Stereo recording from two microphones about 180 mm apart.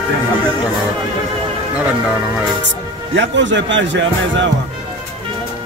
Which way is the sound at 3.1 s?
90° right.